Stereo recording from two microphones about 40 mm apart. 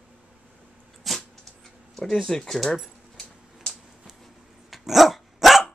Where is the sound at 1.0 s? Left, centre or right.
Centre.